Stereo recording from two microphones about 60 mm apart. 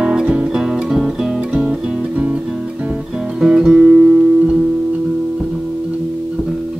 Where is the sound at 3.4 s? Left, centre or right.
Centre.